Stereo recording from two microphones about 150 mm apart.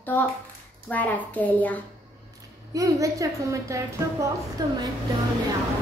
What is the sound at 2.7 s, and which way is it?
A woman's voice, 20° right (ahead or behind).